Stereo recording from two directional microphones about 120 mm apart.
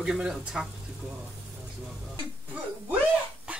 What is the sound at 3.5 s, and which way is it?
Cough, 10° right (ahead or behind).